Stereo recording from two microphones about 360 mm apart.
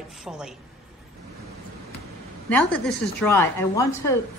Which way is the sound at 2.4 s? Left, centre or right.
Centre.